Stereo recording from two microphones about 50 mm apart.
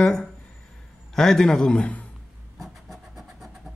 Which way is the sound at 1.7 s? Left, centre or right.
Left.